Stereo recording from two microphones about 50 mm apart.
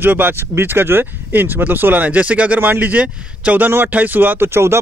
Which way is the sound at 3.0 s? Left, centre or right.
Right.